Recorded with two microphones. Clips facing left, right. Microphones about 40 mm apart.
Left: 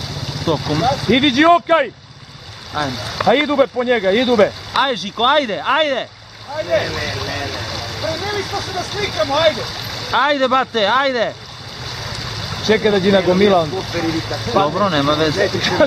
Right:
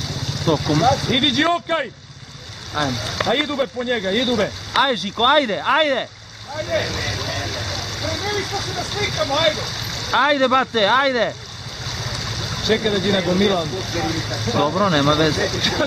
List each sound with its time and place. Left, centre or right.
0.5 s speech: centre
1.1 s speech: left
2.7 s speech: centre
3.3 s speech: left; by 11.3 s centre
12.0 s a sound: centre
12.6 s speech: centre